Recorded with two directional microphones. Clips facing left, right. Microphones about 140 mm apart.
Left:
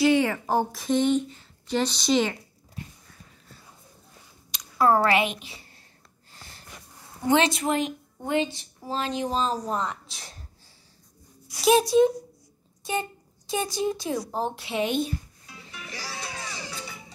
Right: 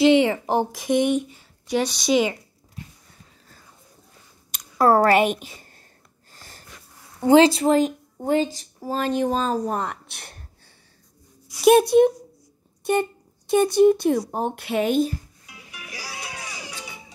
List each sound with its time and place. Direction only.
0.0 s a woman's voice: 20° right (ahead or behind)
4.5 s a woman's voice: 45° right (ahead or behind)
6.3 s wheeze: 45° right (ahead or behind)
7.2 s speech: 30° right (ahead or behind); by 10.4 s 60° right (ahead or behind)
11.6 s a woman's voice: 60° right (ahead or behind)
13.5 s a woman's voice: 60° right (ahead or behind)
15.4 s music: 10° right (ahead or behind)